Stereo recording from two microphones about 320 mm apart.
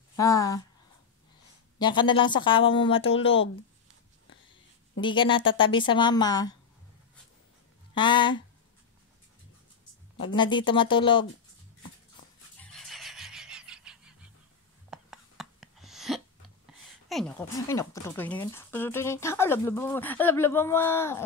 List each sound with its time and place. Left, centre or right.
0.1 s speech: centre
1.8 s speech: centre
4.9 s speech: centre
7.9 s speech: centre
10.2 s speech: centre
12.5 s a sound: centre
14.9 s whispering: centre
17.1 s speech: centre